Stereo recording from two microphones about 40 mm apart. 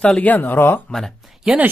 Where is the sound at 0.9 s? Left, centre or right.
Centre.